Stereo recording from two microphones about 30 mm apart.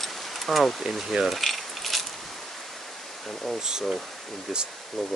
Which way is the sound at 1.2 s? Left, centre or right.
Centre.